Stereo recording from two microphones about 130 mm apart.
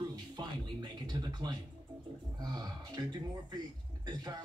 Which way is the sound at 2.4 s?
30° right (ahead or behind).